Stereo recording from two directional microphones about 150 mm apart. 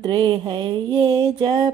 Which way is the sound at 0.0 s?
30° right (ahead or behind).